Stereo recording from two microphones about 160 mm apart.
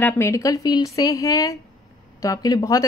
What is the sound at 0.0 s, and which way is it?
A woman's voice, 15° left (ahead or behind).